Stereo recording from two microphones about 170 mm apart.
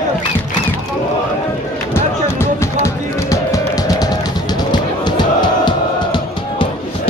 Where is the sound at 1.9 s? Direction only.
15° left (ahead or behind).